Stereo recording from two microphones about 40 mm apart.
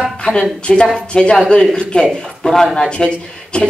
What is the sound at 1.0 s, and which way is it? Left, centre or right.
Speech, left.